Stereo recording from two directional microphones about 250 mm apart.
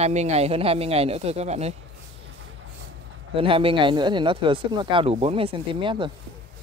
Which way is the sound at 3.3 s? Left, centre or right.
Right.